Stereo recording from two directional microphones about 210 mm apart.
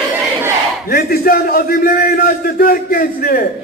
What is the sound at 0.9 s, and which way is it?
A man's voice, 45° left (ahead or behind).